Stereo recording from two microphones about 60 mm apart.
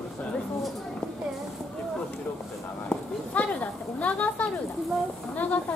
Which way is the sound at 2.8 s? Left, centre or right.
Left.